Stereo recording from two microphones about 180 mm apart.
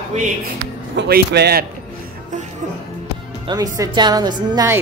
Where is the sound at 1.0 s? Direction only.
60° right (ahead or behind).